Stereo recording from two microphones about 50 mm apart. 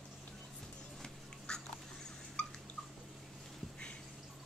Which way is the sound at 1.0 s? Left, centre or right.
Centre.